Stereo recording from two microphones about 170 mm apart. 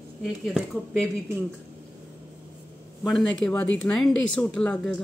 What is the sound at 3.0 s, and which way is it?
Speech, 5° left (ahead or behind).